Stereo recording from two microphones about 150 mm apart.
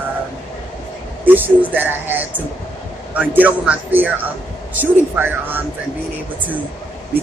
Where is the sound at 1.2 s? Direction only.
10° right (ahead or behind).